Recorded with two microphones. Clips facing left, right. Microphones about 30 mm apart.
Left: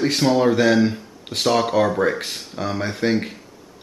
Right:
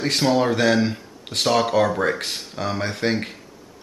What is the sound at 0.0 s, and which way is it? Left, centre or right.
Speech, centre.